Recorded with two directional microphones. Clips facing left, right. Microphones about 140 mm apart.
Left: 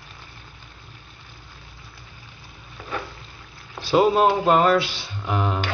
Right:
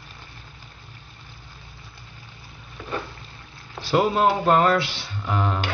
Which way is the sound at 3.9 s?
20° left (ahead or behind).